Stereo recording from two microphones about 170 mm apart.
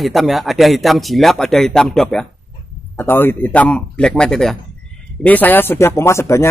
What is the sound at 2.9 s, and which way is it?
Speech, 15° left (ahead or behind).